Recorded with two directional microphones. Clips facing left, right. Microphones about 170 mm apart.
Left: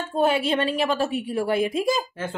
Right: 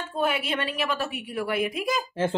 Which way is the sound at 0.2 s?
30° left (ahead or behind).